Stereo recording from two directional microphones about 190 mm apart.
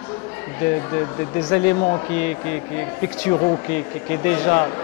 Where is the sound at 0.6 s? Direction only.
15° left (ahead or behind).